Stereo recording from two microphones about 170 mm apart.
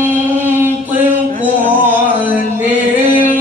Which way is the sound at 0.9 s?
10° right (ahead or behind).